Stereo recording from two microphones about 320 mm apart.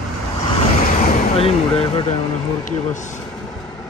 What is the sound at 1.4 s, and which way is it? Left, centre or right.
Speech, centre.